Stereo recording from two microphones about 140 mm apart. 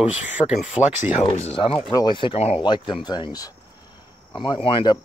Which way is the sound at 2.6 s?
35° left (ahead or behind).